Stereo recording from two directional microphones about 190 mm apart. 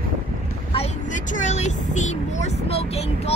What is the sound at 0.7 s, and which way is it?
Vehicle, 35° left (ahead or behind).